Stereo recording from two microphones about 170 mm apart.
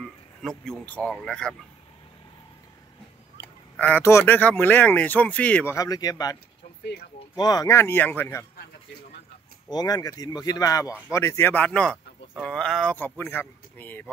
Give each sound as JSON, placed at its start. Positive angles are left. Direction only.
{"t": 0.4, "sound": "speech", "side_deg": 0}
{"t": 3.7, "sound": "speech", "side_deg": 10}
{"t": 6.8, "sound": "speech", "side_deg": 75}
{"t": 7.3, "sound": "speech", "side_deg": 25}
{"t": 9.7, "sound": "speech", "side_deg": 25}